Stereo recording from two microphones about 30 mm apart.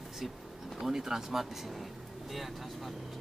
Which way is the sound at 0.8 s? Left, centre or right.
Centre.